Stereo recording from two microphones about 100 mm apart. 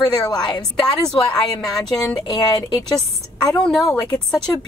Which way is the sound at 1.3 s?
5° left (ahead or behind).